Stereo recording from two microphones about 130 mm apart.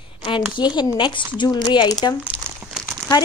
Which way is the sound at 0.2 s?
40° left (ahead or behind).